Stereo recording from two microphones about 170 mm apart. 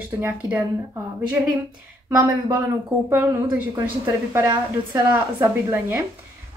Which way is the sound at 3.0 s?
10° right (ahead or behind).